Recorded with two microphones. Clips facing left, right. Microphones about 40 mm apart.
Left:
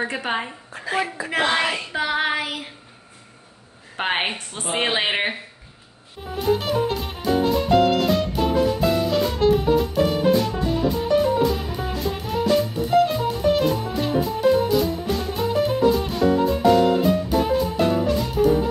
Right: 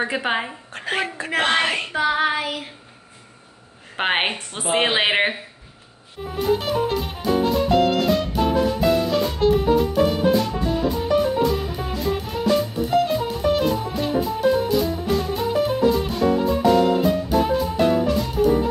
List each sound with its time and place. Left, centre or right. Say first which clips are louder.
0.1 s a woman's voice: right 2 dB; centre
0.7 s a woman's voice: even; right
2.0 s child singing: right 2 dB; centre
3.9 s a woman's voice: right 2 dB; right
6.3 s music: even; centre